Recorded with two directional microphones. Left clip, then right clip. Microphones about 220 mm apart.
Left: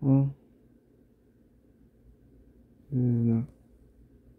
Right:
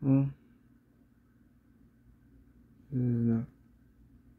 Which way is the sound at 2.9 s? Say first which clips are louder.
Left 3 dB; 20° left (ahead or behind).